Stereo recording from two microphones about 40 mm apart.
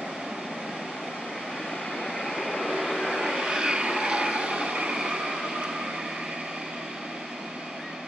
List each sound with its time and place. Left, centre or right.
2.1 s vehicle: centre
4.0 s train: right